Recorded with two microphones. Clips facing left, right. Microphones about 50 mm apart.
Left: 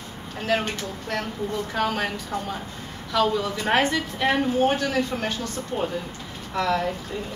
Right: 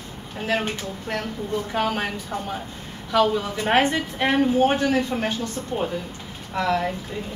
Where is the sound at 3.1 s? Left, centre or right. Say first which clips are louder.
Right 2 dB; right.